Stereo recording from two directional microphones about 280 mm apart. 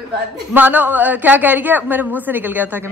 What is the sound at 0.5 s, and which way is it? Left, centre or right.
A woman's voice, centre.